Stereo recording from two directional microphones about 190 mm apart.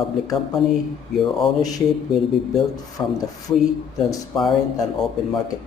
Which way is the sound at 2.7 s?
20° left (ahead or behind).